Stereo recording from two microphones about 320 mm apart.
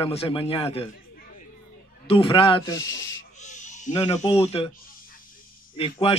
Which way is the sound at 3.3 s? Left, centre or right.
Left.